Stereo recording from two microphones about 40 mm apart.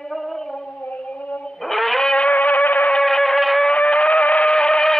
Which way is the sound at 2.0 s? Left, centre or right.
Left.